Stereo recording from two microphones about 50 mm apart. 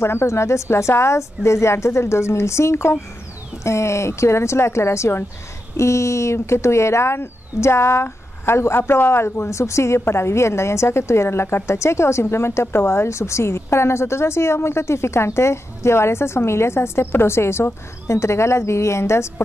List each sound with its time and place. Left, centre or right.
0.0 s a woman's voice: left
3.6 s a woman's voice: left